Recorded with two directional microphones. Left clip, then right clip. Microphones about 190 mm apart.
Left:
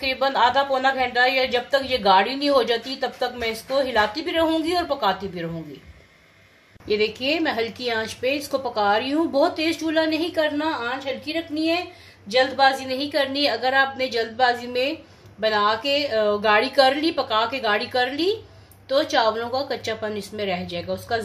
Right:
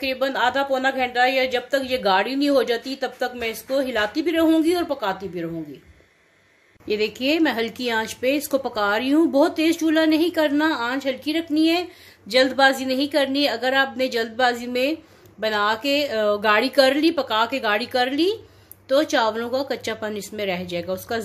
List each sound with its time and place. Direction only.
0.0 s a woman's voice: 40° right (ahead or behind)
6.9 s a woman's voice: 35° right (ahead or behind)